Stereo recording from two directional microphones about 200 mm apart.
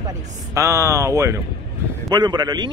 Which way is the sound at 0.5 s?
15° right (ahead or behind).